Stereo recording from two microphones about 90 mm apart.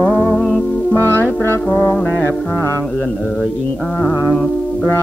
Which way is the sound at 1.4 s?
25° left (ahead or behind).